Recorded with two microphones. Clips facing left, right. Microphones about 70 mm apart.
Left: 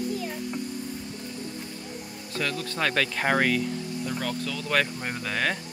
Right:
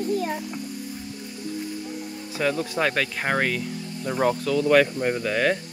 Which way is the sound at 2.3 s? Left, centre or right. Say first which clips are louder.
Right 6 dB; centre.